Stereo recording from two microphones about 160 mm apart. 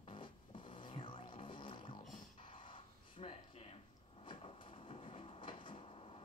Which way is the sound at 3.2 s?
40° left (ahead or behind).